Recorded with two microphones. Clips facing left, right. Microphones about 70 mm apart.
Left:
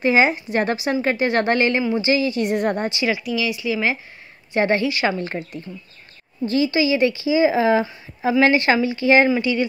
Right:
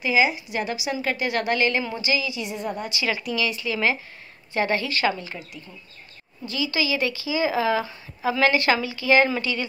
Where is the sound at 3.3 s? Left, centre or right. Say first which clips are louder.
Left 3 dB; centre.